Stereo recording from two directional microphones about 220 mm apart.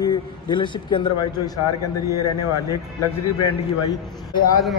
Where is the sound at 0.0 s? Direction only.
20° left (ahead or behind).